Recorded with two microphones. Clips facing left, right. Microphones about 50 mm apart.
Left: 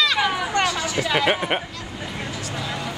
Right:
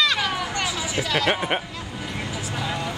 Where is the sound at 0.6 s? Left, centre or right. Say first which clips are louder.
Left 3 dB; centre.